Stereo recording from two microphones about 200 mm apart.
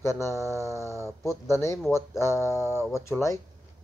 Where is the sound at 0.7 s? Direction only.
15° right (ahead or behind).